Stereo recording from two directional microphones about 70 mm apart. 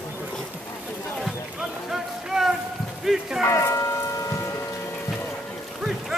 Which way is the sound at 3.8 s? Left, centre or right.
Left.